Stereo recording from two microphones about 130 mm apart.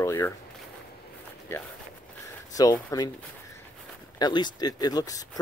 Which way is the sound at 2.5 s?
25° left (ahead or behind).